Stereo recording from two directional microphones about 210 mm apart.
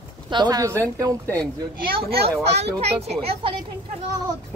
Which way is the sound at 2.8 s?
30° right (ahead or behind).